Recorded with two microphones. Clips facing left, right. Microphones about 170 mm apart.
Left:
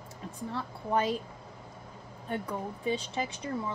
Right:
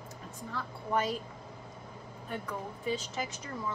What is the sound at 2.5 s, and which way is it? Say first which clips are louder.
Speech: left 2 dB; 30° left (ahead or behind).